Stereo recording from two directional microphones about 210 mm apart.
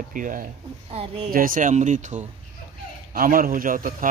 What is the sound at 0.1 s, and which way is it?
Speech, 40° right (ahead or behind).